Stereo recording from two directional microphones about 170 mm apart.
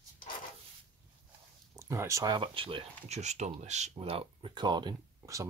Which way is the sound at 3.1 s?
40° right (ahead or behind).